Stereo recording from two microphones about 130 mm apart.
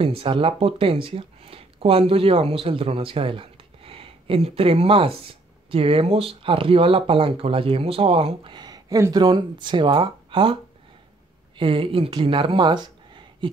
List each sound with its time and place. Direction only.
0.0 s speech: 45° right (ahead or behind)